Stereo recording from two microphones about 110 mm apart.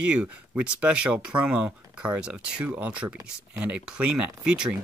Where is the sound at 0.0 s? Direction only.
10° right (ahead or behind).